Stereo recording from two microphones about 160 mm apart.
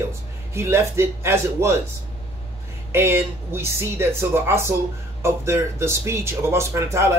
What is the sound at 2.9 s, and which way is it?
Speech, 15° right (ahead or behind).